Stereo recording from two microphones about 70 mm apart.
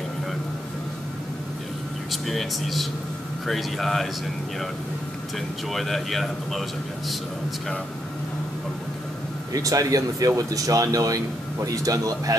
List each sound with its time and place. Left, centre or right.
2.2 s speech: centre
5.7 s speech: centre
9.5 s speech: right